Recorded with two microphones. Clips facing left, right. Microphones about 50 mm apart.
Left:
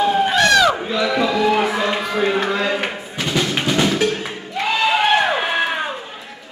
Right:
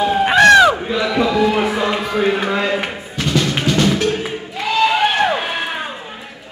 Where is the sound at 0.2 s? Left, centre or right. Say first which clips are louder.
Right 9 dB; right.